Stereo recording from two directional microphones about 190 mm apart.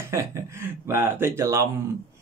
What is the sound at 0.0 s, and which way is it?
Speech, 15° right (ahead or behind).